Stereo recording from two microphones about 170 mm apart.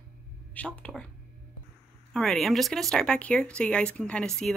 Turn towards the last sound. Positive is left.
turn(degrees=5)  # may be behind; listen again after turning